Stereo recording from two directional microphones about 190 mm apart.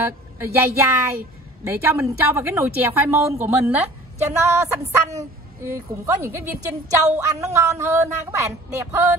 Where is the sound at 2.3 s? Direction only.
15° right (ahead or behind).